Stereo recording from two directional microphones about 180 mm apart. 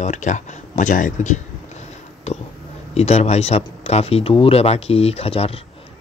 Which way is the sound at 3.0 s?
35° left (ahead or behind).